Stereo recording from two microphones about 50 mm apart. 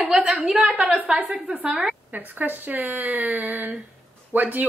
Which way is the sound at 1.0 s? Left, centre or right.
Right.